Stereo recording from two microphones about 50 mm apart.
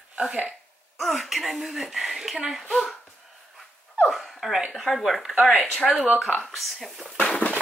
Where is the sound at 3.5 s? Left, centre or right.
Centre.